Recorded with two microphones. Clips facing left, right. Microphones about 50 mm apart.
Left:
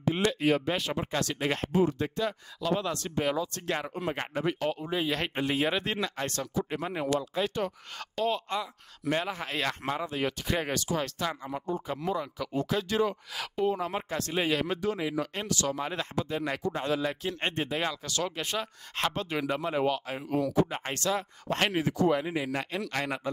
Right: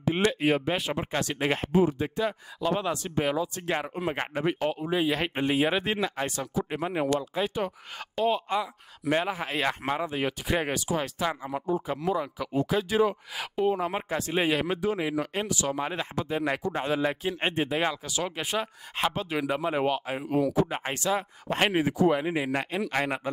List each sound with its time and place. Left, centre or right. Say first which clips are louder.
0.0 s speech: right 2 dB; right